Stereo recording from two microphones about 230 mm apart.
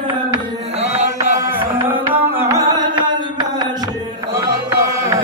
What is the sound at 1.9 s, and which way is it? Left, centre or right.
Music, centre.